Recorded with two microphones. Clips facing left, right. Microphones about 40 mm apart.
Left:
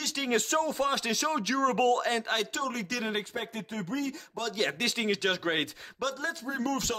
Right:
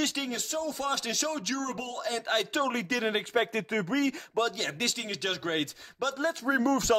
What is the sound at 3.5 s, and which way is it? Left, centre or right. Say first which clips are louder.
Speech: right 5 dB; right.